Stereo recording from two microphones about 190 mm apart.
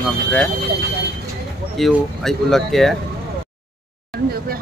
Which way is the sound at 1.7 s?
Centre (ahead or behind).